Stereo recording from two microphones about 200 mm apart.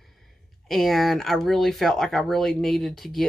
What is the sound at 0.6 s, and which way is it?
Speech, centre (ahead or behind).